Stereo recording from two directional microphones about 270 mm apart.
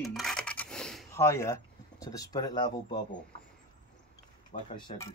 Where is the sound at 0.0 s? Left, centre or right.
Centre.